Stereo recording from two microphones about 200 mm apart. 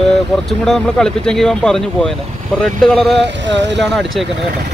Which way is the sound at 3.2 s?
65° right (ahead or behind).